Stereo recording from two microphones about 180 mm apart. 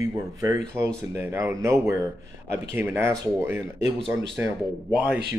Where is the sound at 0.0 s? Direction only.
20° right (ahead or behind).